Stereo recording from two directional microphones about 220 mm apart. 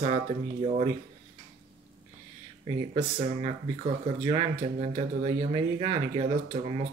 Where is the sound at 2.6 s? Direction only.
25° right (ahead or behind).